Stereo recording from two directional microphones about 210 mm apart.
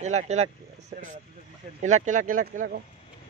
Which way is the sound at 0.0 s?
35° right (ahead or behind).